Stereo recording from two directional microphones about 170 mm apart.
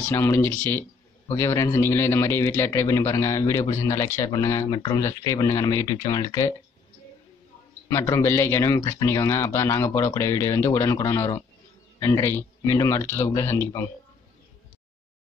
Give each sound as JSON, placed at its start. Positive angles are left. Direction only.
{"t": 0.1, "sound": "a man's voice", "side_deg": 15}
{"t": 7.9, "sound": "a man's voice", "side_deg": 20}